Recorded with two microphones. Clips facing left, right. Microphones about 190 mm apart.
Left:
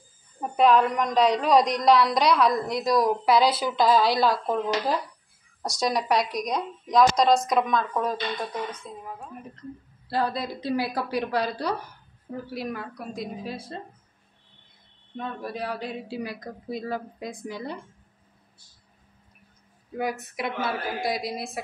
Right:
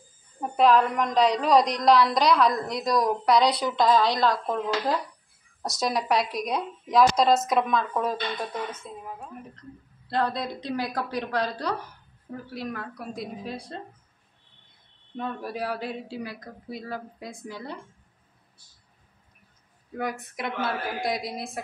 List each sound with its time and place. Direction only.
0.4 s a woman's voice: centre (ahead or behind)
12.9 s a woman's voice: centre (ahead or behind)
15.1 s a woman's voice: 5° right (ahead or behind)
16.1 s a woman's voice: 15° left (ahead or behind)
20.0 s a woman's voice: 5° left (ahead or behind)